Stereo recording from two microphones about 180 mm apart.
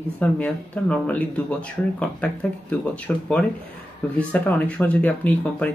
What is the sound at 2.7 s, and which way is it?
Speech, 5° left (ahead or behind).